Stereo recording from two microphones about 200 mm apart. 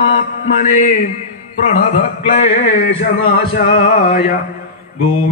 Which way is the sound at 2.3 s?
35° left (ahead or behind).